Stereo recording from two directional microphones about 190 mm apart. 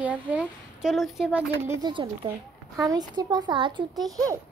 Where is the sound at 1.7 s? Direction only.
25° right (ahead or behind).